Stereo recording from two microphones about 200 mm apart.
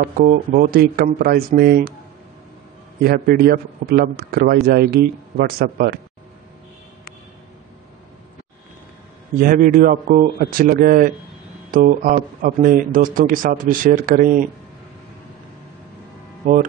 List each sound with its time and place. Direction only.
0.2 s a man's voice: 45° right (ahead or behind)
3.0 s a man's voice: 50° right (ahead or behind)
9.4 s a man's voice: 45° right (ahead or behind)